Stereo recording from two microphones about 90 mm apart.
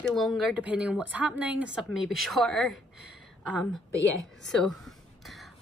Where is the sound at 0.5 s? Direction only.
15° right (ahead or behind).